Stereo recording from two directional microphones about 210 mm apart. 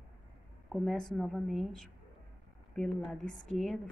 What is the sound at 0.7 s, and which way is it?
Speech, centre (ahead or behind).